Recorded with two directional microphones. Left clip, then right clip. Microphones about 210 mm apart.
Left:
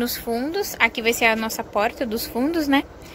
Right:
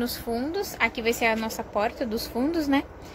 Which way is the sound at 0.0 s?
5° left (ahead or behind).